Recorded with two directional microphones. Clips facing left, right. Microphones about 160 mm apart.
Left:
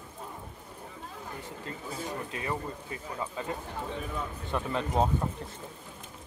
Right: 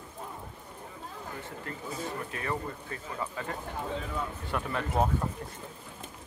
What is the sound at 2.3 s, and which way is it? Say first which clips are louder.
Speech: even; 20° left (ahead or behind).